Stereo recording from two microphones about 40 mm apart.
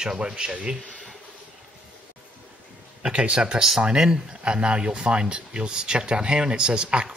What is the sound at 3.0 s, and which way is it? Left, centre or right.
Speech, right.